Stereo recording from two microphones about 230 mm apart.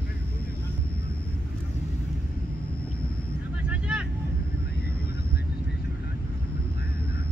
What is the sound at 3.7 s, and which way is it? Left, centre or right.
Vehicle, centre.